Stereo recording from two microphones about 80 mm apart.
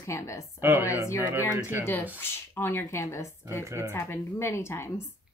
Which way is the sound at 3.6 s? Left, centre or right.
Right.